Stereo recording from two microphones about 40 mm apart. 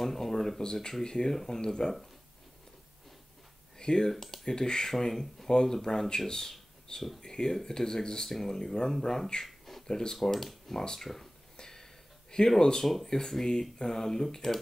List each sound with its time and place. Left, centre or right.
0.0 s speech: centre
3.7 s a sound: centre
4.1 s speech: centre
4.5 s speech: centre
9.3 s a sound: centre
9.8 s speech: centre
10.2 s speech: centre
10.8 s speech: centre
11.5 s a sound: centre
13.0 s speech: centre